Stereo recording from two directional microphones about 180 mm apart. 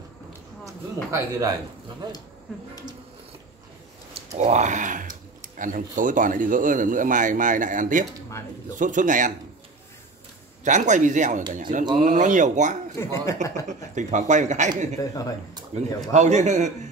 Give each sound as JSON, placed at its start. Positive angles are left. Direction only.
{"t": 1.1, "sound": "a man's voice", "side_deg": -20}
{"t": 4.1, "sound": "speech", "side_deg": -40}
{"t": 10.6, "sound": "speech", "side_deg": -40}
{"t": 12.9, "sound": "speech", "side_deg": 15}
{"t": 13.7, "sound": "a man's voice", "side_deg": -40}